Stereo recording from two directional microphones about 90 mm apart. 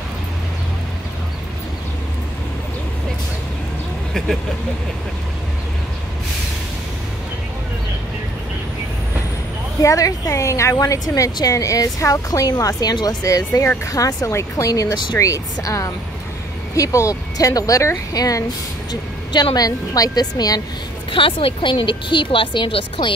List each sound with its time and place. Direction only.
9.8 s a woman's voice: 40° left (ahead or behind)
19.5 s a woman's voice: 45° left (ahead or behind)
21.1 s speech: 80° left